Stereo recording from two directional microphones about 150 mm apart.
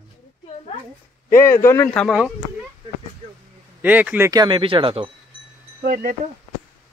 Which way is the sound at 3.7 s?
10° right (ahead or behind).